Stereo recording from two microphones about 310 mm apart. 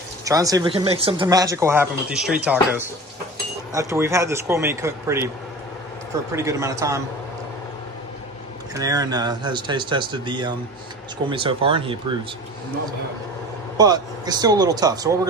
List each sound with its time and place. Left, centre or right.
0.2 s speech: centre
6.3 s speech: centre
8.7 s speech: centre
13.7 s speech: centre